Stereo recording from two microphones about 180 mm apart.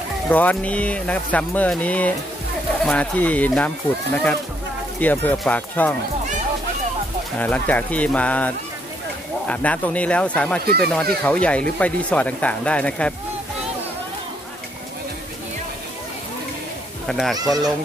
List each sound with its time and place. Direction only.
0.3 s speech: 10° left (ahead or behind)
7.3 s speech: 10° left (ahead or behind)
10.6 s speech: 60° right (ahead or behind)
10.9 s speech: 5° left (ahead or behind)
17.1 s speech: centre (ahead or behind)